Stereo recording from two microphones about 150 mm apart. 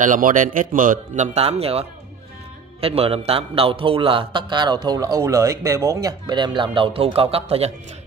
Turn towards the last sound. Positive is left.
turn(degrees=-45)  # may be behind; listen again after turning